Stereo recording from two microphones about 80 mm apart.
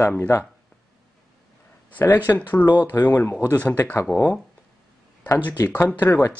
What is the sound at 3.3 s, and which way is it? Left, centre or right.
Speech, centre.